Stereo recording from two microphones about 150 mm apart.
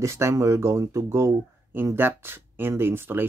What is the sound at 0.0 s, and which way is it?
Speech, 20° right (ahead or behind).